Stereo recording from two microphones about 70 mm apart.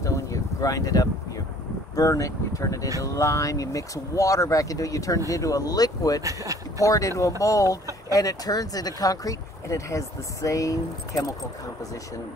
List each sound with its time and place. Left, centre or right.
0.0 s a sound: left
2.0 s speech: left
6.2 s speech: right
6.8 s speech: left